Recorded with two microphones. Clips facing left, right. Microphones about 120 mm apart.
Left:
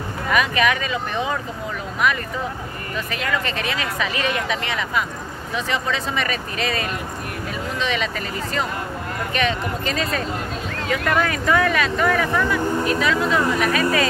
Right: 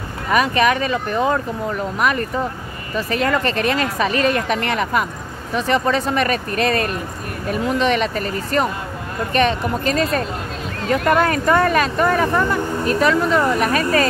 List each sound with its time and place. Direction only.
0.3 s speech: 40° right (ahead or behind)